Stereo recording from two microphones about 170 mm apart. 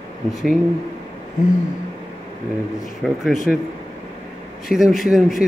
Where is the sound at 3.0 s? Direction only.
Centre (ahead or behind).